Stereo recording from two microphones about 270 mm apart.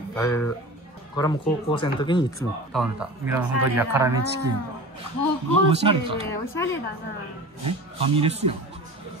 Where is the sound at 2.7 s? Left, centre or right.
Centre.